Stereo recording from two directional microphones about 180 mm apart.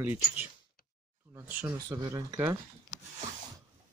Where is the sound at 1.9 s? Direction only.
20° right (ahead or behind).